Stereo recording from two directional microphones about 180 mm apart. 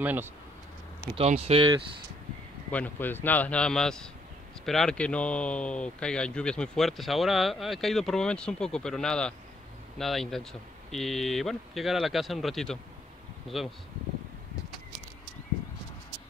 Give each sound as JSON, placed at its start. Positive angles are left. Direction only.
{"t": 0.0, "sound": "speech", "side_deg": -10}
{"t": 1.1, "sound": "speech", "side_deg": -35}
{"t": 2.7, "sound": "speech", "side_deg": 10}